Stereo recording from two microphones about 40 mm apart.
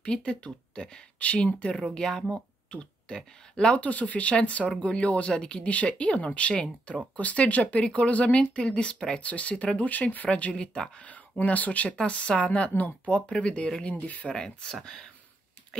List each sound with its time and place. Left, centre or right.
0.0 s speech: left
2.7 s a sound: left
3.5 s speech: left
3.8 s speech: left
9.2 s speech: left
9.8 s speech: left
10.5 s speech: left
12.0 s speech: left
12.6 s speech: left
13.9 s speech: left
14.3 s speech: centre
15.7 s a sound: centre